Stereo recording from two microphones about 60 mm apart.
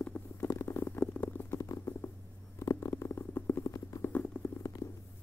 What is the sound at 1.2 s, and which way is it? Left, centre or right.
Stomach rumble, left.